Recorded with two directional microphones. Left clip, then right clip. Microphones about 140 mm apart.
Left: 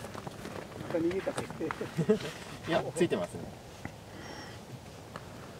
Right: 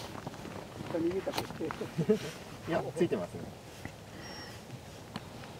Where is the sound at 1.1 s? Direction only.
45° left (ahead or behind).